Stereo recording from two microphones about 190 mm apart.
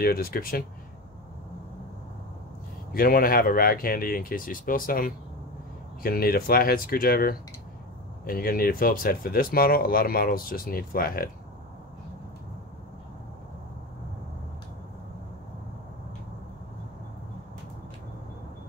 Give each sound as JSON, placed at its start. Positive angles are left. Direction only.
{"t": 0.0, "sound": "speech", "side_deg": 50}
{"t": 2.9, "sound": "speech", "side_deg": 50}